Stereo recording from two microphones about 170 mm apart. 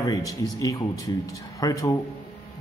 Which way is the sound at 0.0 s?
20° left (ahead or behind).